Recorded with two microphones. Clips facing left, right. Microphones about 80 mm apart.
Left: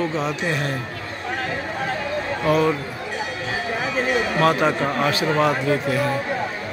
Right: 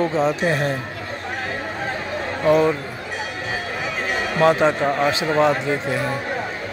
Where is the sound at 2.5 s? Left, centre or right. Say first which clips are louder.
Right 3 dB; centre.